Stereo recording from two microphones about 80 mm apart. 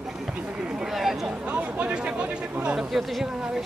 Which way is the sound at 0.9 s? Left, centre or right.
Centre.